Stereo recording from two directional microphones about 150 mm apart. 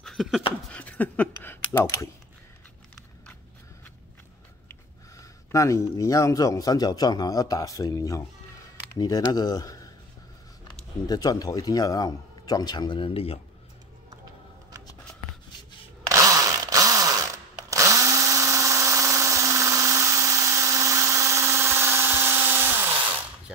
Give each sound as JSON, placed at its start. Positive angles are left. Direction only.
{"t": 0.0, "sound": "a sound", "side_deg": 0}
{"t": 4.6, "sound": "a man's voice", "side_deg": 20}
{"t": 11.1, "sound": "a man's voice", "side_deg": 25}
{"t": 16.1, "sound": "power tool", "side_deg": -20}
{"t": 17.6, "sound": "drill", "side_deg": -20}